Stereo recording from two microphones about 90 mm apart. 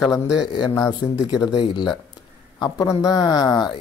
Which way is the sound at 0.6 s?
35° left (ahead or behind).